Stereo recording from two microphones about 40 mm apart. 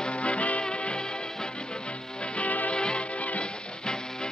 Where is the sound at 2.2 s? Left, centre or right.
Left.